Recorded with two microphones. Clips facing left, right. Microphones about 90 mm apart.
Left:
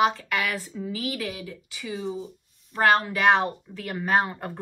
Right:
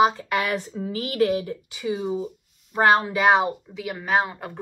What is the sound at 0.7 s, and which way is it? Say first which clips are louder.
Speech: right 6 dB; 45° right (ahead or behind).